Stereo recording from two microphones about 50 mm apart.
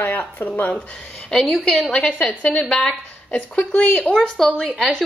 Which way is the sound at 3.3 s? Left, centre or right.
Left.